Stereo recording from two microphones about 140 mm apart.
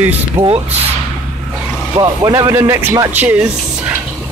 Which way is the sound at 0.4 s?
45° right (ahead or behind).